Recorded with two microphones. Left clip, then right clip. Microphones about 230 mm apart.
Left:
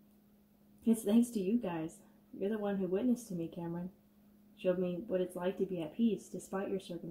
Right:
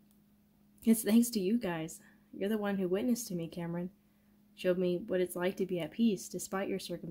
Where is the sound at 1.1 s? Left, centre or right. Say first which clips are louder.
Even; right.